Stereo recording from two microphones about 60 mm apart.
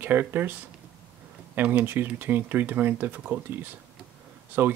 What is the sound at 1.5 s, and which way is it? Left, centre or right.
Speech, right.